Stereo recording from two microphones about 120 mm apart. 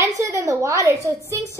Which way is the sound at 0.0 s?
25° right (ahead or behind).